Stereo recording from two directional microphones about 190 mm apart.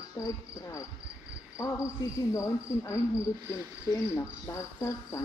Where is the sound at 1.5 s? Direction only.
15° left (ahead or behind).